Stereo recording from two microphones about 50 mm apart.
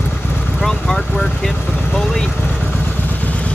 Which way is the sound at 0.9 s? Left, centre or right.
Left.